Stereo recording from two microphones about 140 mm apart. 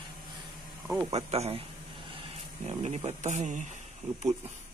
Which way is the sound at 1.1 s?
50° right (ahead or behind).